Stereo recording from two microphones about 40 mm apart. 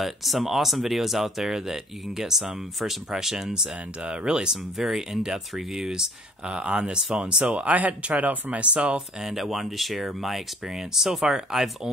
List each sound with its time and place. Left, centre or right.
0.0 s speech: centre
4.0 s speech: right
4.7 s speech: centre
6.4 s speech: right
7.5 s speech: right
9.2 s speech: centre